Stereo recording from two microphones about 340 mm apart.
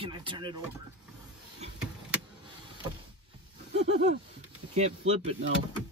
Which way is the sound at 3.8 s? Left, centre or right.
Centre.